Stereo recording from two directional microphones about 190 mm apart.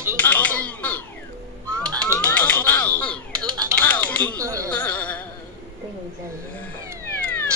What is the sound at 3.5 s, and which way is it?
Music, 20° right (ahead or behind).